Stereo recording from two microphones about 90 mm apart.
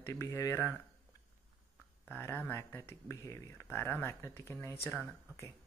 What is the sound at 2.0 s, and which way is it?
Speech, 20° left (ahead or behind).